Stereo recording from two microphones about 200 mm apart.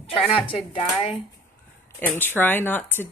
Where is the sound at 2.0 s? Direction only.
10° left (ahead or behind).